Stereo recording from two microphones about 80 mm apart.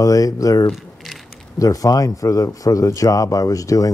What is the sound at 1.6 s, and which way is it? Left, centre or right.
Speech, left.